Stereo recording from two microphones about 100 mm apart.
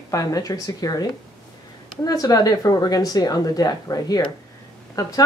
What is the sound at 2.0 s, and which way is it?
A woman's voice, 40° left (ahead or behind).